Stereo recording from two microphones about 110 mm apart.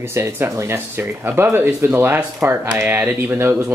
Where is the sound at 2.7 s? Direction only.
10° right (ahead or behind).